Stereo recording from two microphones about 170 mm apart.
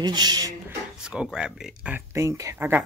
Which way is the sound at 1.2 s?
5° right (ahead or behind).